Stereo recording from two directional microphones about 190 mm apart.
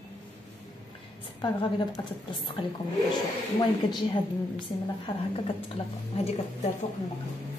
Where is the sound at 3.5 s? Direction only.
25° left (ahead or behind).